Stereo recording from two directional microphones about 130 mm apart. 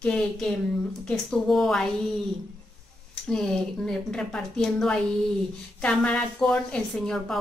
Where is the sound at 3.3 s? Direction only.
5° left (ahead or behind).